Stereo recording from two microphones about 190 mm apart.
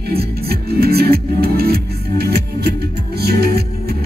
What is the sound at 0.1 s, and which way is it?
Music, 55° right (ahead or behind).